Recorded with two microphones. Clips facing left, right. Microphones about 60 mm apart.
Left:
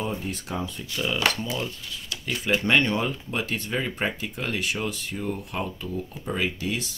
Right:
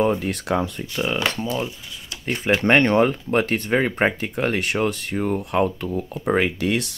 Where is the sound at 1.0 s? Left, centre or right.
Right.